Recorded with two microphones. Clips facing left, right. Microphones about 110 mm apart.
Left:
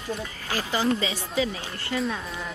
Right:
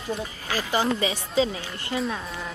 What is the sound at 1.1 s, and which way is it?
Speech, 25° right (ahead or behind).